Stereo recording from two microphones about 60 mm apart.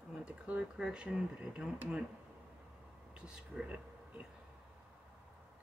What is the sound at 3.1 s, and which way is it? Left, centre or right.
Speech, centre.